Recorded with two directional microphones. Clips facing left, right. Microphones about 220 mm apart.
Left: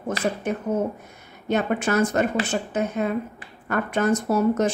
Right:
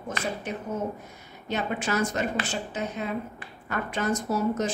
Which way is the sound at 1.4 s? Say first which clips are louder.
Left 6 dB; 55° left (ahead or behind).